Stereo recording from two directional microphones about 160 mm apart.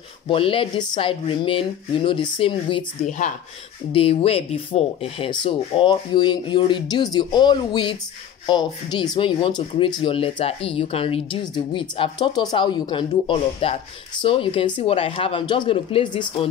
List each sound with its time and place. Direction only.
0.3 s speech: 35° left (ahead or behind)
3.1 s speech: 50° left (ahead or behind)
3.9 s speech: 35° left (ahead or behind)